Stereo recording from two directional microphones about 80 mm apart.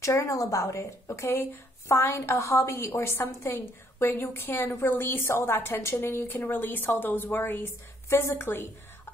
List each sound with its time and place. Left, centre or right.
0.0 s a woman's voice: left
0.3 s a woman's voice: left